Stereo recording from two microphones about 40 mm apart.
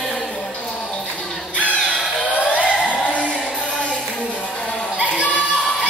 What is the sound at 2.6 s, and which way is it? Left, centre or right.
Music, left.